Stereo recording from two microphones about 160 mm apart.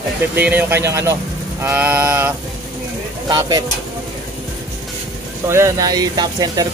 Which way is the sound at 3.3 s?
25° right (ahead or behind).